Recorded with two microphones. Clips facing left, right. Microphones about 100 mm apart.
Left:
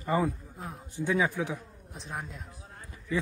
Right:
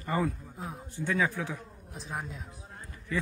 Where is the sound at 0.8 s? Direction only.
15° left (ahead or behind).